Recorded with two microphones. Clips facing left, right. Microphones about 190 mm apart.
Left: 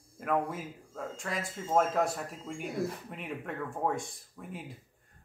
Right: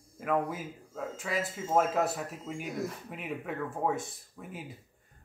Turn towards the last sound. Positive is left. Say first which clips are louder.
# even
turn(degrees=-5)  # may be behind; listen again after turning